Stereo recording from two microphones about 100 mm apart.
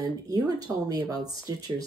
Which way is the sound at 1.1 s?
40° right (ahead or behind).